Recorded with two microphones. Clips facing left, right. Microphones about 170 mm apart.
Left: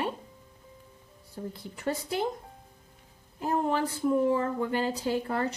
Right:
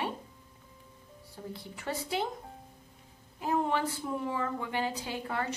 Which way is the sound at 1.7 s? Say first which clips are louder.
Left 3 dB; 45° left (ahead or behind).